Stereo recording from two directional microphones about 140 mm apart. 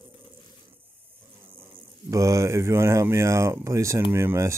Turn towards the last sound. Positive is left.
turn(degrees=-20)  # may be behind; listen again after turning